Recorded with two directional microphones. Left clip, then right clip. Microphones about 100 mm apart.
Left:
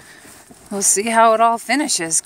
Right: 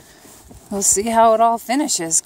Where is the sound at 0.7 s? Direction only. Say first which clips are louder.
Left 1 dB; 35° right (ahead or behind).